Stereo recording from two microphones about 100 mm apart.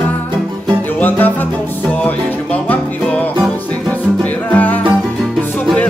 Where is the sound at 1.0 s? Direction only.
15° left (ahead or behind).